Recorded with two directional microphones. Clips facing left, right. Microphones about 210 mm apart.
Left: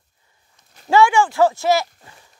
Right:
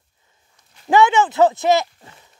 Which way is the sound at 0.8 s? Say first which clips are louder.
Even; 20° right (ahead or behind).